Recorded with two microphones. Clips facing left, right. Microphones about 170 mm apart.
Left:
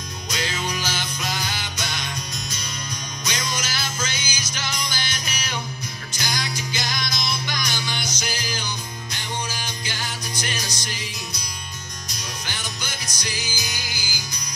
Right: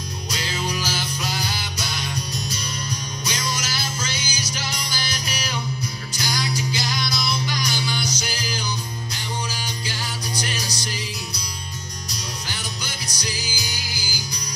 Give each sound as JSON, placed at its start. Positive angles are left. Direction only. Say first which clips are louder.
{"t": 0.3, "sound": "music", "louder": "even", "side_deg": -35}
{"t": 9.8, "sound": "music", "louder": "right 2 dB", "side_deg": -35}
{"t": 12.1, "sound": "music", "louder": "right 1 dB", "side_deg": -35}